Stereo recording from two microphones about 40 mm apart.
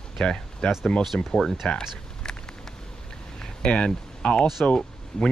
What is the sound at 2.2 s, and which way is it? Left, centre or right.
Vehicle, centre.